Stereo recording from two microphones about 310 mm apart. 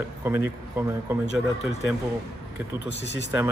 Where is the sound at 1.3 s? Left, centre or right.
Left.